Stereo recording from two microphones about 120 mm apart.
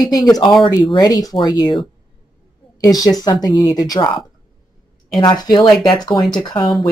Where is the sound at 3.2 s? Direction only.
35° left (ahead or behind).